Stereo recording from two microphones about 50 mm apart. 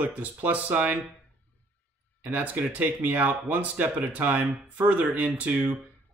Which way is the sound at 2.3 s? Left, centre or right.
Right.